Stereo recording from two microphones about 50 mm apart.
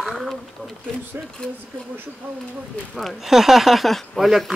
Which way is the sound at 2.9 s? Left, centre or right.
Centre.